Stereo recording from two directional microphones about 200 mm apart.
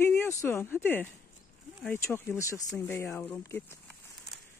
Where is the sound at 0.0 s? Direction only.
10° left (ahead or behind).